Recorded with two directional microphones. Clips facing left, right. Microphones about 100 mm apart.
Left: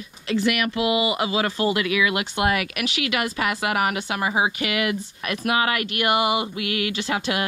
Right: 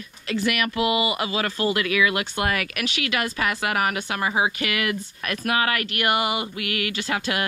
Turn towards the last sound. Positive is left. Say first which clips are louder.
# left 1 dB
turn(degrees=20)  # may be behind; listen again after turning